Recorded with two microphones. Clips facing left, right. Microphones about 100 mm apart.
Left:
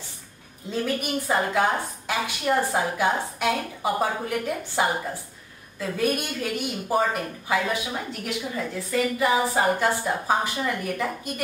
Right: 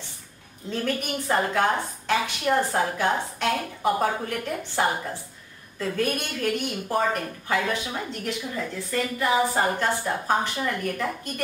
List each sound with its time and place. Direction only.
0.7 s a woman's voice: 10° left (ahead or behind)